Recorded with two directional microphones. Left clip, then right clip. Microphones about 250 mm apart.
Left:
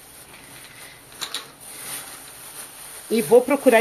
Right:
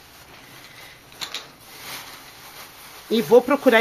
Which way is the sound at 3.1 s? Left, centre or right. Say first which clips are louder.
Even; centre.